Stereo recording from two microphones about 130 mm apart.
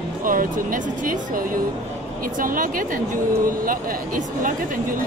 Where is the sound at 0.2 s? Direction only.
90° right.